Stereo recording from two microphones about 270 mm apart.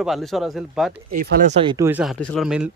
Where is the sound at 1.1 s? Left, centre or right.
Right.